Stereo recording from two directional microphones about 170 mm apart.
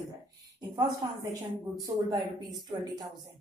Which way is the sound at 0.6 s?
20° right (ahead or behind).